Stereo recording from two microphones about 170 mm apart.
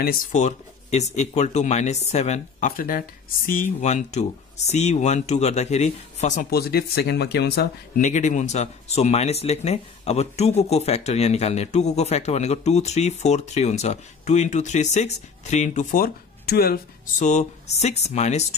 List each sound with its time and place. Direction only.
0.0 s speech: 50° left (ahead or behind)
2.8 s speech: 55° left (ahead or behind)
3.8 s speech: 40° left (ahead or behind)
6.5 s speech: 70° left (ahead or behind)
8.0 s speech: 45° left (ahead or behind); by 17.1 s 65° left (ahead or behind)
17.2 s speech: 45° left (ahead or behind)